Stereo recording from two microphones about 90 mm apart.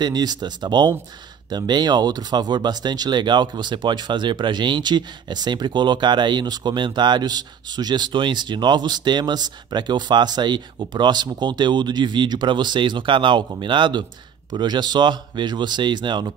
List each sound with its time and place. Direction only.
0.0 s speech: 50° right (ahead or behind)